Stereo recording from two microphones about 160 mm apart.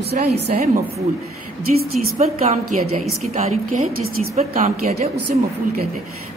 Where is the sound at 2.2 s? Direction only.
40° right (ahead or behind).